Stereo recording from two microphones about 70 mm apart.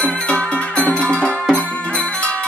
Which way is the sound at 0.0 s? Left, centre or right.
Centre.